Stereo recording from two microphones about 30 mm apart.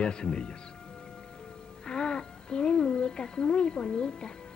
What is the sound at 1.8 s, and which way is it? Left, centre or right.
Speech, left.